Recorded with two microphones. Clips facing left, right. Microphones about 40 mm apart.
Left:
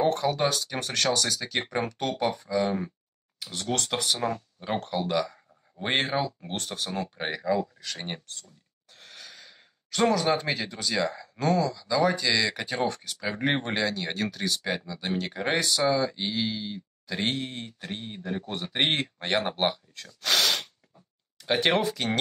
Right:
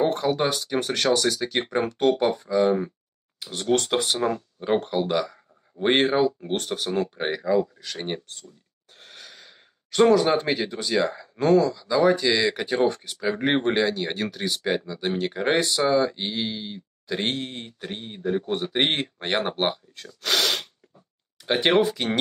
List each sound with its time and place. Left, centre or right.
0.0 s speech: centre
1.9 s speech: right
3.7 s speech: right
4.2 s speech: centre
8.9 s sigh: right
10.1 s speech: right
20.5 s a sound: centre